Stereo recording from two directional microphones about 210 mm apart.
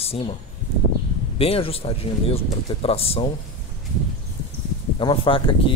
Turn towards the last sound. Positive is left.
turn(degrees=25)  # may be behind; listen again after turning